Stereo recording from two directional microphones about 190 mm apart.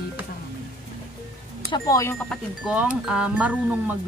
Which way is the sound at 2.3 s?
5° right (ahead or behind).